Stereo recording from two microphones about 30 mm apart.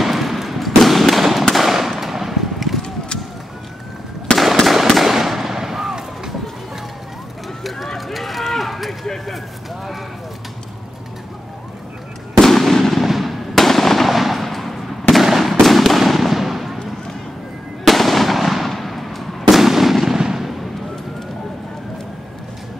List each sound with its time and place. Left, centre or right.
0.0 s a sound: centre
1.5 s fireworks: centre
4.3 s fireworks: left
5.0 s fireworks: centre
7.6 s run: centre
9.0 s vehicle: centre
12.4 s fireworks: centre
13.0 s fireworks: centre
17.8 s fireworks: centre